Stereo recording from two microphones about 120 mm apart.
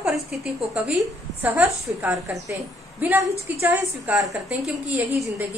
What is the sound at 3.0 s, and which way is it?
A woman's voice, 15° right (ahead or behind).